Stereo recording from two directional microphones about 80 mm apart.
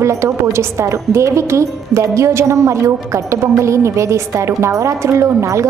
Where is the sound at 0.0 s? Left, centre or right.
Right.